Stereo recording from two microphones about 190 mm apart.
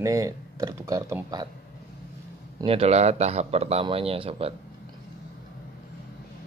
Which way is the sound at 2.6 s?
30° right (ahead or behind).